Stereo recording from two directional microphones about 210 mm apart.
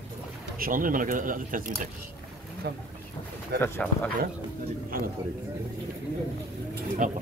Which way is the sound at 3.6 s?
5° left (ahead or behind).